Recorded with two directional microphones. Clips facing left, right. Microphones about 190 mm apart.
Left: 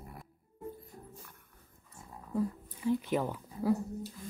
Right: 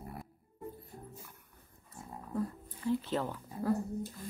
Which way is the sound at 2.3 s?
15° left (ahead or behind).